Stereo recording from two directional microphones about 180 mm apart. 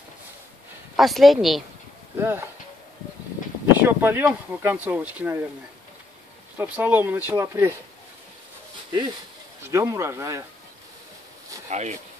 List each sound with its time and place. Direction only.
0.9 s speech: centre (ahead or behind)
2.1 s speech: 15° right (ahead or behind)
3.7 s speech: 10° right (ahead or behind)
6.6 s speech: 10° right (ahead or behind)
9.7 s speech: 15° right (ahead or behind)
11.7 s speech: 40° right (ahead or behind)